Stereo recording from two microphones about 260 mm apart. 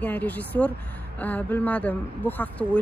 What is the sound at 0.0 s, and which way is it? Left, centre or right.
Speech, centre.